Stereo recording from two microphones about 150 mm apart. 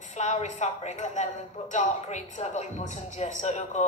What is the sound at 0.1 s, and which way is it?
A woman's voice, 50° left (ahead or behind).